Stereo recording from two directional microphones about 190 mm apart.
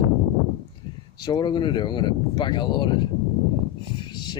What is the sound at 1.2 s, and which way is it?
Speech, 25° left (ahead or behind).